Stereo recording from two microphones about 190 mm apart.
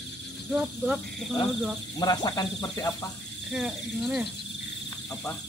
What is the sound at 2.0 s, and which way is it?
Speech, 20° left (ahead or behind).